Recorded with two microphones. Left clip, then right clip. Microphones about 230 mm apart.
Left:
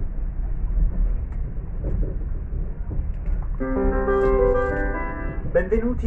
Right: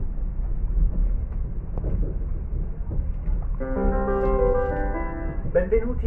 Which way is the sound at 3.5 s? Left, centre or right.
Left.